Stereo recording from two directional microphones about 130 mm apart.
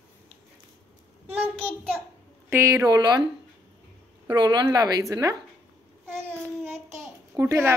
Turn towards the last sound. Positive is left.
turn(degrees=-20)  # may be behind; listen again after turning